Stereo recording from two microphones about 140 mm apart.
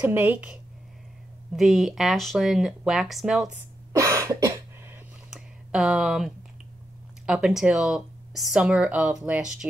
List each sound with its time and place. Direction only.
0.0 s a woman's voice: 15° right (ahead or behind)
3.9 s cough: 20° right (ahead or behind)
5.3 s a sound: centre (ahead or behind)
7.2 s speech: 5° right (ahead or behind)